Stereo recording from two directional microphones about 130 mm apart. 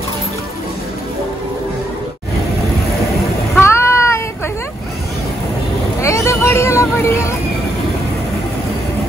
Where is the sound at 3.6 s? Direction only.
20° left (ahead or behind).